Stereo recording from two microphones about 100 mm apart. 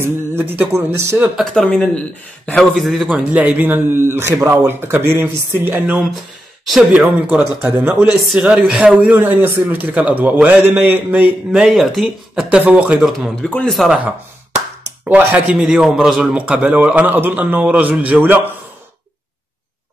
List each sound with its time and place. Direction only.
0.0 s speech: 25° right (ahead or behind)
1.4 s speech: 5° left (ahead or behind)
3.1 s a man's voice: 15° right (ahead or behind)
11.6 s speech: centre (ahead or behind)
12.4 s a man's voice: 15° right (ahead or behind)
13.4 s speech: 15° left (ahead or behind)
13.7 s speech: centre (ahead or behind)
15.0 s a man's voice: 15° right (ahead or behind)